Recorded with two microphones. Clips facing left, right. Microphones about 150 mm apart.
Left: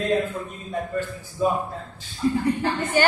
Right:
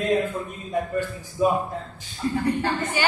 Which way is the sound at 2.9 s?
45° left (ahead or behind).